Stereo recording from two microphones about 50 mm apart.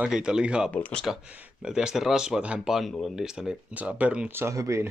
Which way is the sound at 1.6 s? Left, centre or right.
Centre.